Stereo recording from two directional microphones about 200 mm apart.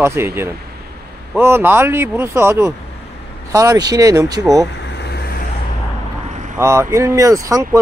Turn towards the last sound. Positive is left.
turn(degrees=-15)  # may be behind; listen again after turning